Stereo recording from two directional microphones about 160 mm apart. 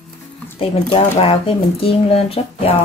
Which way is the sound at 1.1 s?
40° left (ahead or behind).